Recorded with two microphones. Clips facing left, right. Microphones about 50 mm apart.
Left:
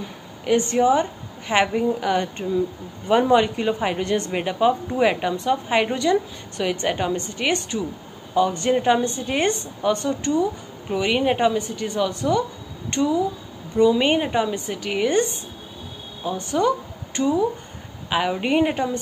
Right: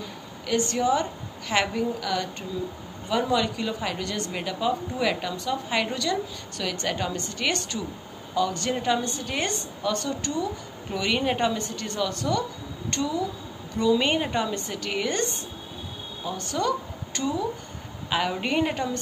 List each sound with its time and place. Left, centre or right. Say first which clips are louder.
0.0 s a sound: left 5 dB; left
1.5 s a woman's voice: left 5 dB; left
16.3 s a woman's voice: left 6 dB; left